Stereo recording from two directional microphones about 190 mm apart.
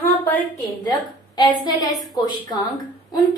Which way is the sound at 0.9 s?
20° left (ahead or behind).